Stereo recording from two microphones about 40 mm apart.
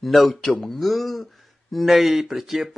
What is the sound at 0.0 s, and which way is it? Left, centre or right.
Speech, centre.